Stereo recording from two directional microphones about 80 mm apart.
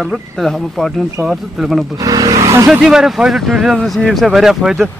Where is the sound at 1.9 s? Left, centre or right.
Right.